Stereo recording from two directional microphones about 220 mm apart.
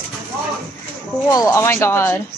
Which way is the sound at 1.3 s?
15° left (ahead or behind).